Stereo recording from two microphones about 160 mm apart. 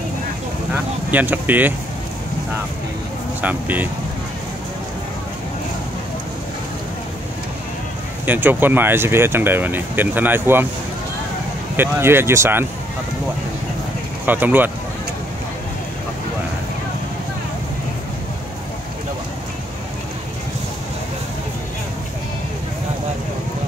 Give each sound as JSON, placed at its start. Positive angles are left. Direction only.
{"t": 1.1, "sound": "speech", "side_deg": -10}
{"t": 3.3, "sound": "speech", "side_deg": -10}
{"t": 8.3, "sound": "speech", "side_deg": -10}
{"t": 11.7, "sound": "speech", "side_deg": -15}
{"t": 14.2, "sound": "speech", "side_deg": -10}